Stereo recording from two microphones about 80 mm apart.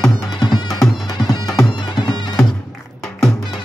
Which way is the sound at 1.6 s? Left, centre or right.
Left.